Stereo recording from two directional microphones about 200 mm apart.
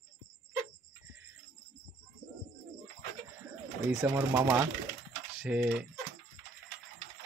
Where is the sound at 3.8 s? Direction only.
10° right (ahead or behind).